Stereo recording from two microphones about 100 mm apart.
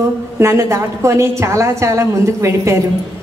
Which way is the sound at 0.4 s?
30° right (ahead or behind).